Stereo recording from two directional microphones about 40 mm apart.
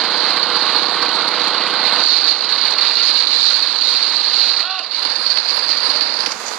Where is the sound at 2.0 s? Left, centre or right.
Right.